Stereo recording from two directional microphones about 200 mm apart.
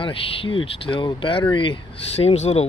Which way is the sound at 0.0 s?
25° left (ahead or behind).